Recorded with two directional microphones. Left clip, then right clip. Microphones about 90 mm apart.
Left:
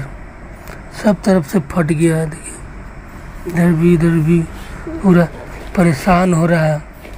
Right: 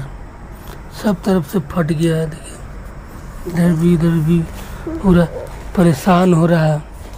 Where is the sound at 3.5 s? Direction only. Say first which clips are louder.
Left 3 dB; centre (ahead or behind).